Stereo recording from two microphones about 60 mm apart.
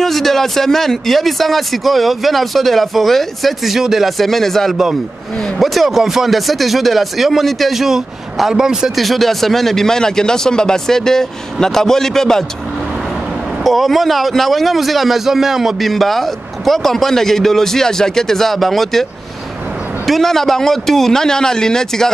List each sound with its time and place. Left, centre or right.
0.0 s speech: centre
13.7 s speech: centre
20.1 s a man's voice: centre